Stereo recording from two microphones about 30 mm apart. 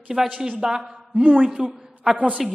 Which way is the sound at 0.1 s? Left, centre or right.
Centre.